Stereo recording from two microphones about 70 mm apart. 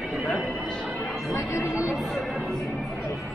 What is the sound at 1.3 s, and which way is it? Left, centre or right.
Music, left.